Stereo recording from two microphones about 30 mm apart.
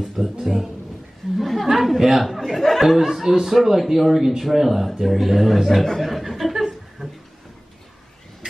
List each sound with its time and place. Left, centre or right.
0.0 s speech: centre
0.4 s speech: centre
1.3 s a woman's voice: centre
1.7 s speech: centre
2.2 s speech: centre
3.0 s speech: centre
5.9 s a sound: centre
7.0 s a sound: right